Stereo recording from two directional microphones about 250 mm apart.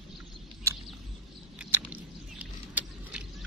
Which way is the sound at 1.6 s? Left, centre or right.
Centre.